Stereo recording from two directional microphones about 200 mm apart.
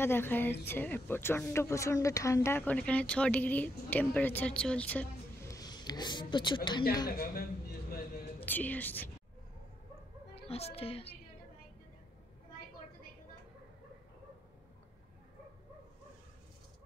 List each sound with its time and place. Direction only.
0.0 s speech: 10° left (ahead or behind)
7.1 s a man's voice: 50° left (ahead or behind)
8.4 s speech: 10° left (ahead or behind)
10.3 s a woman's voice: 30° left (ahead or behind)